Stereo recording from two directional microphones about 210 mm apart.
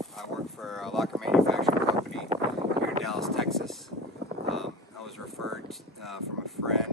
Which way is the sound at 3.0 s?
Centre (ahead or behind).